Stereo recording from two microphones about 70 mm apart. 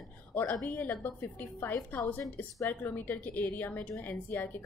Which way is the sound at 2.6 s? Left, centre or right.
Left.